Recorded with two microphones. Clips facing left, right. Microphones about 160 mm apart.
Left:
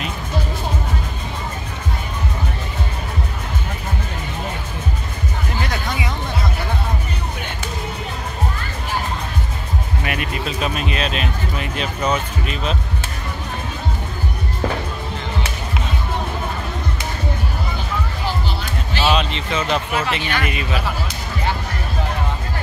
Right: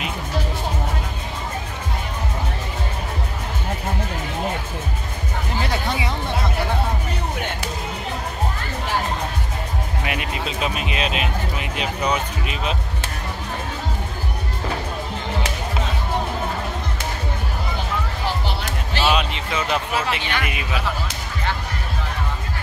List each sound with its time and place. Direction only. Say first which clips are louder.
5.7 s music: right 1 dB; 30° right (ahead or behind)
10.0 s a sound: left 2 dB; 20° right (ahead or behind)
12.1 s speech: left 2 dB; 10° right (ahead or behind)
19.0 s speech: left 2 dB; 10° right (ahead or behind)